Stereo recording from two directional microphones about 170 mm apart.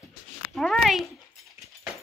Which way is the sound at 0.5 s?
Centre (ahead or behind).